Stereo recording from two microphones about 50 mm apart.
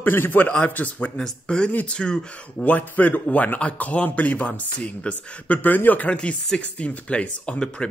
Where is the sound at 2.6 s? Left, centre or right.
Left.